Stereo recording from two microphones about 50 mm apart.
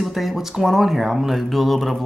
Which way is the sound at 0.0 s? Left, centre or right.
Centre.